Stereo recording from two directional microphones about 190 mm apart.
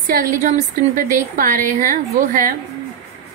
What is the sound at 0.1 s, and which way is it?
A woman's voice, 45° right (ahead or behind).